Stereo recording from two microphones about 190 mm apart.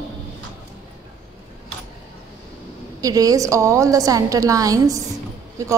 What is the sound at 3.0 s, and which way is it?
A woman's voice, 20° right (ahead or behind).